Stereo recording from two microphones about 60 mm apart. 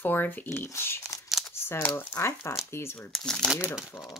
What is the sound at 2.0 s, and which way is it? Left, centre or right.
Speech, left.